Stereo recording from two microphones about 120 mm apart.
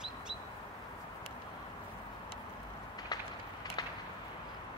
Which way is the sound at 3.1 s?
35° left (ahead or behind).